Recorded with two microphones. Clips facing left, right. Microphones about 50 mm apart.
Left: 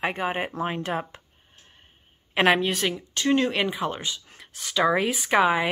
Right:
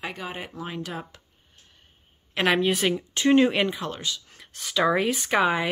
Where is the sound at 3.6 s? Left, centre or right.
Centre.